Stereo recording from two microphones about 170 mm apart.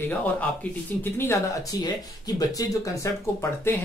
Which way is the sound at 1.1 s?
15° left (ahead or behind).